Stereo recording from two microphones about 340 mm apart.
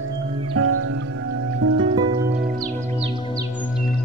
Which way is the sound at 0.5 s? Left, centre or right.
Right.